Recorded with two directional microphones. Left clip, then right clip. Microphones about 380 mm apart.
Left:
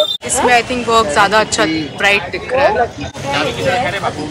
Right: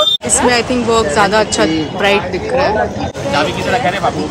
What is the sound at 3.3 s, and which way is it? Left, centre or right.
Speech, right.